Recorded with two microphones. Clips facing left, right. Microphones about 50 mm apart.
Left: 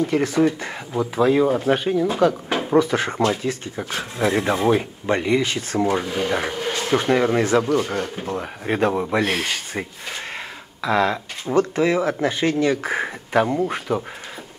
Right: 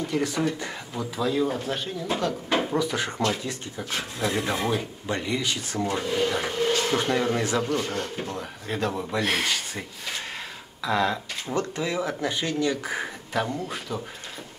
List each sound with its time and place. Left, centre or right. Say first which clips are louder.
0.0 s speech: left 7 dB; left
2.1 s speech: left 6 dB; left
9.2 s speech: left 3 dB; centre
10.8 s speech: left 5 dB; centre
11.1 s speech: left 4 dB; left